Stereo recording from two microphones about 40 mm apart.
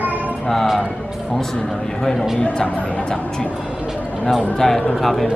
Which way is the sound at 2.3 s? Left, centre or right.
Left.